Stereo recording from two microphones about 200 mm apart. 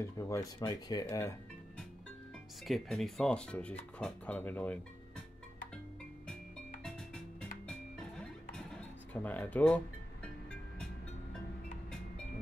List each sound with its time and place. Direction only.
0.0 s speech: 15° left (ahead or behind)
2.6 s speech: centre (ahead or behind)
6.8 s music: 5° left (ahead or behind)